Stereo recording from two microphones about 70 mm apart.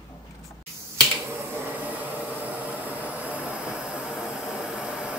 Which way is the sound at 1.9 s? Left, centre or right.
Right.